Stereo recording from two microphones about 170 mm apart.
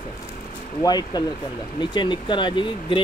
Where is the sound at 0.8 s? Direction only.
25° left (ahead or behind).